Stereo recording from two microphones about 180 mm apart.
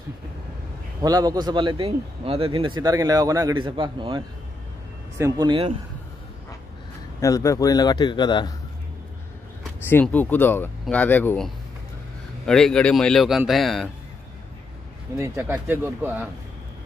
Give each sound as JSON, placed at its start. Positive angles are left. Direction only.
{"t": 1.0, "sound": "a man's voice", "side_deg": -20}
{"t": 5.1, "sound": "speech", "side_deg": -15}
{"t": 5.5, "sound": "a man's voice", "side_deg": -30}
{"t": 7.2, "sound": "a man's voice", "side_deg": 15}
{"t": 9.8, "sound": "speech", "side_deg": 10}
{"t": 15.1, "sound": "speech", "side_deg": -15}